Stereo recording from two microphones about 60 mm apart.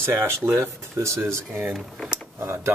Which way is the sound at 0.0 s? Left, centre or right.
Right.